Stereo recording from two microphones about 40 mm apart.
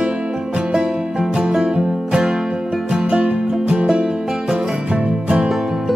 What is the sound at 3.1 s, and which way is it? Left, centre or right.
Music, right.